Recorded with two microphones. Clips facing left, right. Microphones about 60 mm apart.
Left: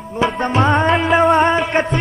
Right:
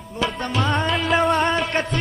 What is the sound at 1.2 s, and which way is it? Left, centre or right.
Music, centre.